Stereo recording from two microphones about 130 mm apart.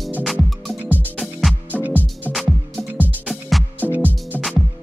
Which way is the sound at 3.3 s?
Centre (ahead or behind).